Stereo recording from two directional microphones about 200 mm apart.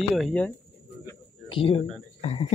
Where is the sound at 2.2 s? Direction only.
30° left (ahead or behind).